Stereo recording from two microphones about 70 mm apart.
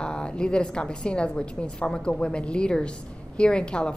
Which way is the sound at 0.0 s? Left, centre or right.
Centre.